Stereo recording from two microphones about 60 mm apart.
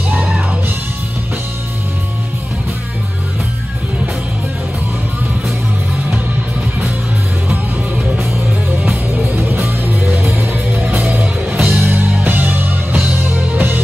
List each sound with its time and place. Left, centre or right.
8.2 s music: right